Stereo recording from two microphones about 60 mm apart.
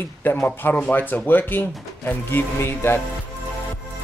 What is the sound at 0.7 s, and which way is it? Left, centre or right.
Speech, left.